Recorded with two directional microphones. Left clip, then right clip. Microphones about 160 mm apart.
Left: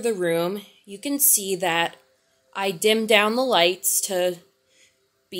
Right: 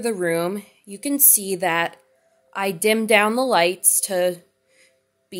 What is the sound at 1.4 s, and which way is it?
A woman's voice, 10° right (ahead or behind).